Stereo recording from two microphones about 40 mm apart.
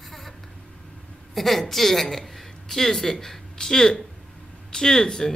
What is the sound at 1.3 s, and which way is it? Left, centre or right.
A woman's voice, centre.